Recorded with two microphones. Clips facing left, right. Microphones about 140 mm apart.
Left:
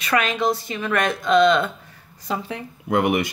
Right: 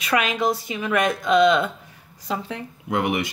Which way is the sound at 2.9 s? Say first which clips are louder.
Left 3 dB; 50° left (ahead or behind).